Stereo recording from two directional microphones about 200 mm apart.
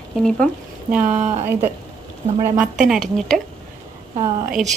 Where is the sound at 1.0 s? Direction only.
35° right (ahead or behind).